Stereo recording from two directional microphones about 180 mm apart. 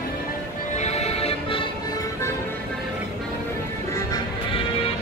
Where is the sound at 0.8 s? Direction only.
35° left (ahead or behind).